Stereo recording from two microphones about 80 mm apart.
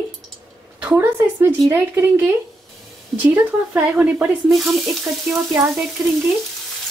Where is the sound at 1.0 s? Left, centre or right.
Right.